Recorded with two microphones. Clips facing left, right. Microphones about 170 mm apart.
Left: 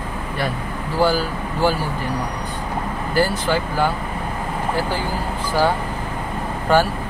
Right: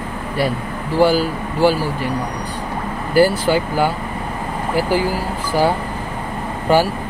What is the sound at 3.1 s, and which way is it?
Speech, 10° right (ahead or behind).